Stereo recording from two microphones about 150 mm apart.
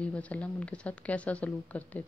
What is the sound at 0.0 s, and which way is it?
Speech, 10° left (ahead or behind).